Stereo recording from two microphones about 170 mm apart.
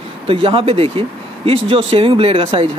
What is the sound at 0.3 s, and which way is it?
Speech, 35° right (ahead or behind).